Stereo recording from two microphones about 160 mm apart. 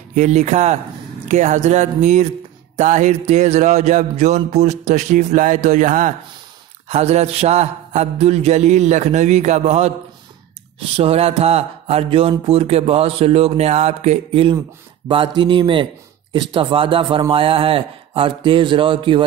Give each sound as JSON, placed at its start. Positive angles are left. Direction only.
{"t": 0.1, "sound": "music", "side_deg": -50}
{"t": 11.0, "sound": "mantra", "side_deg": -40}